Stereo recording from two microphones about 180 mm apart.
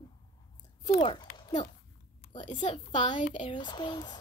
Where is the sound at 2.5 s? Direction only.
45° left (ahead or behind).